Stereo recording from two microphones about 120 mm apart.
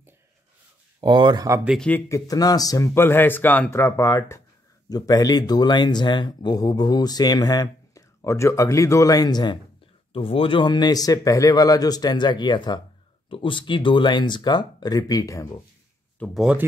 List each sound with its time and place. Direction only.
1.0 s speech: 40° right (ahead or behind)
1.8 s speech: 15° left (ahead or behind)
2.0 s speech: 30° left (ahead or behind)
10.1 s speech: 50° left (ahead or behind); by 15.4 s 30° left (ahead or behind)